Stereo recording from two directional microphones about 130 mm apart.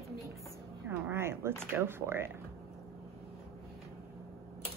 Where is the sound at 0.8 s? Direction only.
15° right (ahead or behind).